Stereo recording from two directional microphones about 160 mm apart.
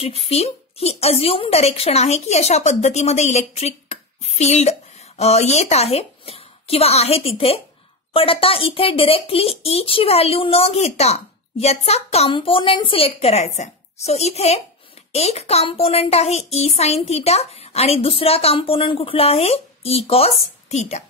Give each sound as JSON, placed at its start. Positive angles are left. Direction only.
{"t": 0.0, "sound": "a woman's voice", "side_deg": 40}